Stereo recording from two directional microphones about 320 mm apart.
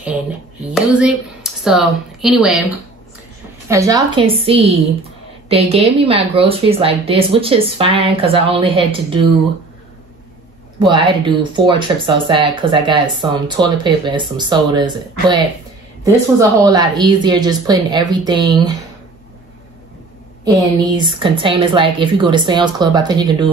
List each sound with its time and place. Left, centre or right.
0.7 s speech: centre
3.6 s speech: centre
10.8 s speech: centre
20.9 s speech: centre